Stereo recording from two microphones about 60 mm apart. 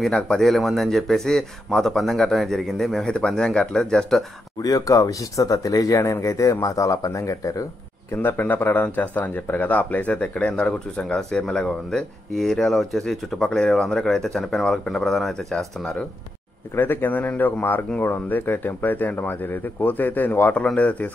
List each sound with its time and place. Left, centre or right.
0.0 s speech: centre
4.6 s speech: left
8.2 s speech: left
11.1 s speech: centre
16.7 s speech: left
20.6 s speech: left